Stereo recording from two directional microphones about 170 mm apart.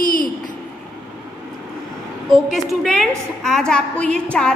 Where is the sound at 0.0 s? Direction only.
55° left (ahead or behind).